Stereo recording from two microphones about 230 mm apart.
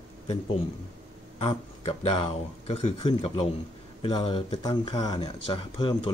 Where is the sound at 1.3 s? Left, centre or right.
Left.